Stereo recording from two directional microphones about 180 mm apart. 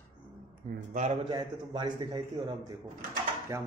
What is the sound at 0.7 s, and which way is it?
Speech, 40° right (ahead or behind).